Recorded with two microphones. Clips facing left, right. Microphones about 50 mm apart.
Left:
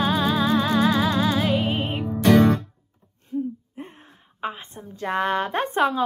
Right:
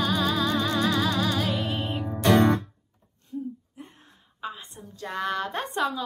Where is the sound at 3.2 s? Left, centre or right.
Left.